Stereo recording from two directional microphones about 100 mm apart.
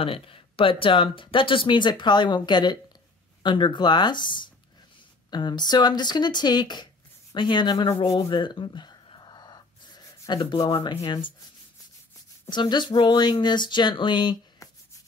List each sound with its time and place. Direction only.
0.0 s speech: 70° left (ahead or behind); by 7.9 s 50° left (ahead or behind)
8.1 s gasp: 45° left (ahead or behind)
10.7 s speech: 50° left (ahead or behind)
12.4 s speech: 50° left (ahead or behind)